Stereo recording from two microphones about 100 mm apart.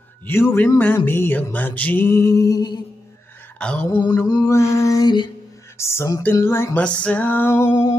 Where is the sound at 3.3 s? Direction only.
20° left (ahead or behind).